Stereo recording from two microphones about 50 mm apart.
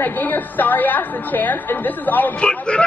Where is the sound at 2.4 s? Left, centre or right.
Left.